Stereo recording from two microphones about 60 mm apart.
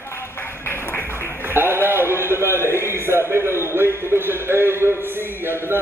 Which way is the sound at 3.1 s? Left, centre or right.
Right.